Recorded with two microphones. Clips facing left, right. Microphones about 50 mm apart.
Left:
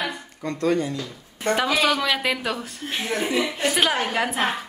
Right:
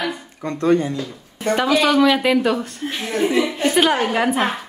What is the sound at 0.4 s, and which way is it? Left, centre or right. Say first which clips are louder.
Speech: right 5 dB; right.